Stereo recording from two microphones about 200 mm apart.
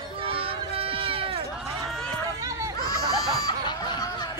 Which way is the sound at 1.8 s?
Centre (ahead or behind).